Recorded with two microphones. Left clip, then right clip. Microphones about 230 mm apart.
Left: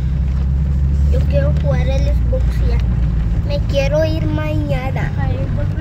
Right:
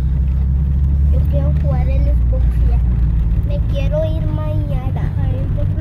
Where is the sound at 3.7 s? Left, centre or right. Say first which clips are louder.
Left 5 dB; left.